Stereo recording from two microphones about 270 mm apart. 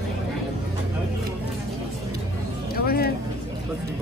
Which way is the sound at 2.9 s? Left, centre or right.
Left.